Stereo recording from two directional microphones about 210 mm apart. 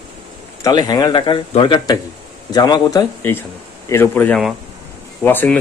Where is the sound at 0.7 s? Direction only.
20° left (ahead or behind).